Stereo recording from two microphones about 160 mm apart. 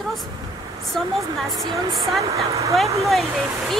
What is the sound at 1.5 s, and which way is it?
Speech, centre (ahead or behind).